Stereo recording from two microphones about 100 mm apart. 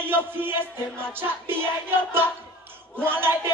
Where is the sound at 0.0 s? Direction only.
20° right (ahead or behind).